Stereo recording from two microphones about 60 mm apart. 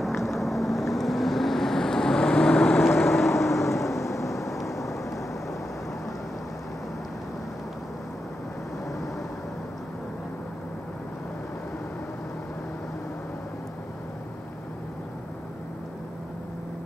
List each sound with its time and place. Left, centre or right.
0.0 s vehicle: centre
3.3 s vehicle: left